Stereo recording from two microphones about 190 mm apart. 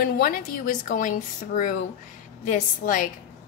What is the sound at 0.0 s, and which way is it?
A woman's voice, 45° left (ahead or behind).